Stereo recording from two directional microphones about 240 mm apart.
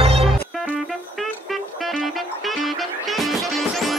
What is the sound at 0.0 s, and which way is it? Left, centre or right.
Music, right.